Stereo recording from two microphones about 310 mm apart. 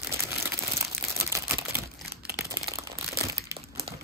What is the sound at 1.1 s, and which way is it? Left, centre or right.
Camera, centre.